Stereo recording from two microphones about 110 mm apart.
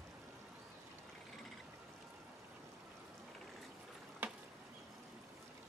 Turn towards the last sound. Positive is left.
turn(degrees=-15)  # may be behind; listen again after turning